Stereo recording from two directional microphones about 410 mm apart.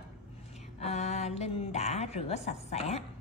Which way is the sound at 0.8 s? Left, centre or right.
Centre.